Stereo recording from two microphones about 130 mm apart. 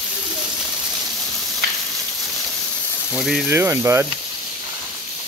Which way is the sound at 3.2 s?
Centre (ahead or behind).